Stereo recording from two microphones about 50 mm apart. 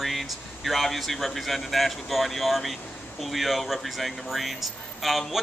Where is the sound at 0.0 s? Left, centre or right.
Centre.